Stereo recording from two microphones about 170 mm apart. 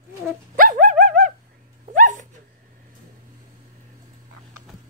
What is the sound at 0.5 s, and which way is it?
Dog, 55° right (ahead or behind).